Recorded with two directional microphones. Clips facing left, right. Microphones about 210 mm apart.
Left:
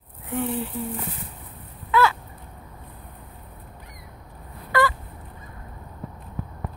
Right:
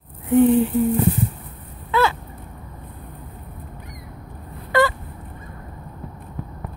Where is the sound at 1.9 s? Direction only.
25° right (ahead or behind).